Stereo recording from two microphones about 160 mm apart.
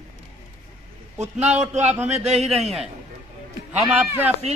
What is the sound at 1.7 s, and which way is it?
Speech, 45° right (ahead or behind).